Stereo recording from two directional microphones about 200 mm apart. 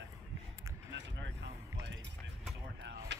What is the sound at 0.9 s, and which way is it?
Keys jangling, 60° right (ahead or behind).